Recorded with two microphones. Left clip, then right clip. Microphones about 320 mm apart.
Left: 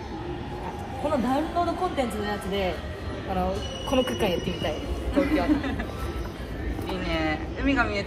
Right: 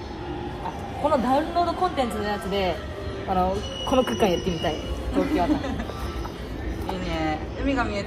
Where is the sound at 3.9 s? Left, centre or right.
Right.